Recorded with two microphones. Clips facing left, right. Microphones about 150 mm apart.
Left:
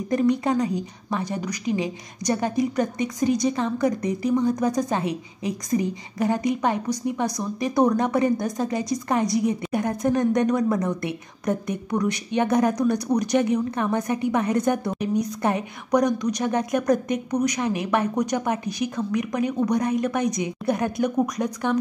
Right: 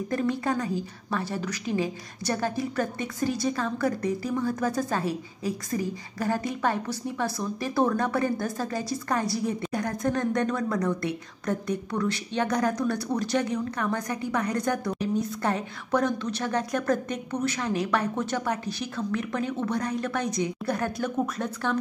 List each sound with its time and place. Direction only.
0.1 s a woman's voice: 15° left (ahead or behind)